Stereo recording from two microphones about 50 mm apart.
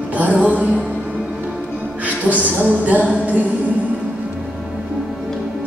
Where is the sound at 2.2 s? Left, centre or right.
Right.